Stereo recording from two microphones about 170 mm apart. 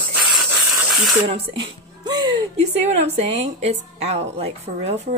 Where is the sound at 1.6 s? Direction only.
30° right (ahead or behind).